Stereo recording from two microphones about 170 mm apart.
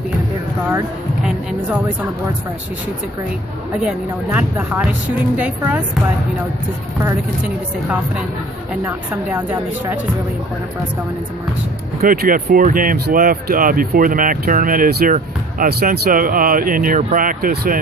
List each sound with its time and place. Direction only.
3.8 s speech: 10° right (ahead or behind)
8.8 s speech: 10° right (ahead or behind)
12.0 s speech: 55° right (ahead or behind)